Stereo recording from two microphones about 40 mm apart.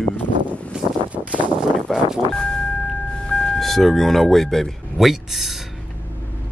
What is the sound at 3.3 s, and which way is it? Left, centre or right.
Vehicle, centre.